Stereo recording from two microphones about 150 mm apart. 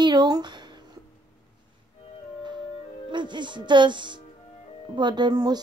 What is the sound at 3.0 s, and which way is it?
A woman's voice, 30° right (ahead or behind).